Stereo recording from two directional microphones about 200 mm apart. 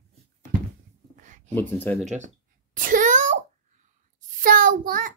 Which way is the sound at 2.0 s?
35° right (ahead or behind).